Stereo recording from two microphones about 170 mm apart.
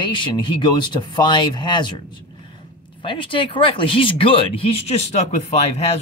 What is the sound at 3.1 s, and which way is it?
Speech, 30° left (ahead or behind).